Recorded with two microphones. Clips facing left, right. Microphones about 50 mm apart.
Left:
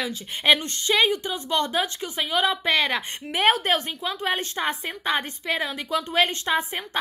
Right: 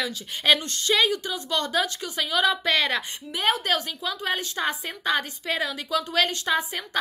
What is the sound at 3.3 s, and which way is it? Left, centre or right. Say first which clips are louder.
Speech: left 5 dB; left.